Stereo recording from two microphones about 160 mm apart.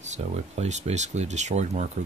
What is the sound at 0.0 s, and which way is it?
Speech, 45° right (ahead or behind).